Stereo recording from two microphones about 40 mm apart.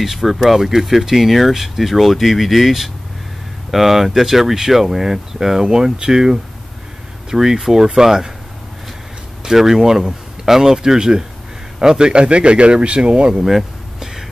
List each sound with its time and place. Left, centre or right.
0.0 s speech: centre
9.4 s speech: centre
12.1 s speech: right
13.4 s a sound: centre